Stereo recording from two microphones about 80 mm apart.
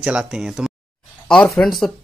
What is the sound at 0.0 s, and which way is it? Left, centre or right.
Speech, centre.